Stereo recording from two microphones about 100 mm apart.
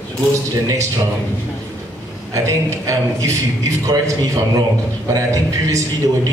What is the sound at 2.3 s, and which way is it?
A man's voice, 30° right (ahead or behind).